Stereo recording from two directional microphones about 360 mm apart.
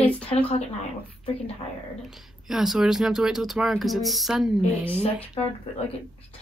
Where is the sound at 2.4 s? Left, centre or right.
Centre.